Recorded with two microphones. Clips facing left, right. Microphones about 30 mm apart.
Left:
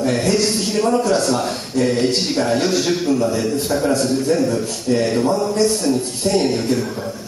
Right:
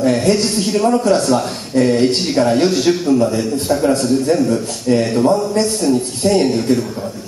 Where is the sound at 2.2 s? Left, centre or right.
Centre.